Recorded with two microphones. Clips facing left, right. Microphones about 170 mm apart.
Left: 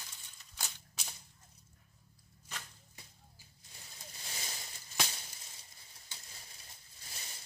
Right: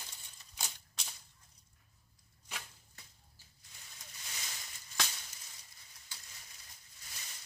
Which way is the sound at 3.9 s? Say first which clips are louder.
Left 3 dB; 30° left (ahead or behind).